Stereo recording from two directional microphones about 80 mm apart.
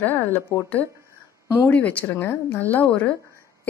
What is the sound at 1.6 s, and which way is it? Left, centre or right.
Speech, centre.